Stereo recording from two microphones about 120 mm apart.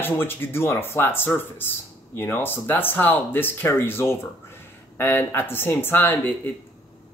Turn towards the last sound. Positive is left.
turn(degrees=15)  # may be behind; listen again after turning